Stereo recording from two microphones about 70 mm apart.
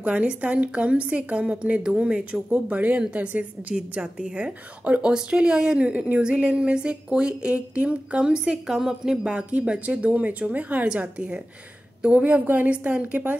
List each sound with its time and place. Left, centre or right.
0.0 s a woman's voice: centre